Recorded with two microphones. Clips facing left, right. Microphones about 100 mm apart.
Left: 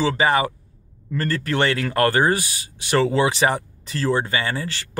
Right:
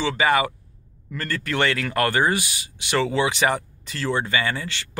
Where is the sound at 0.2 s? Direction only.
30° left (ahead or behind).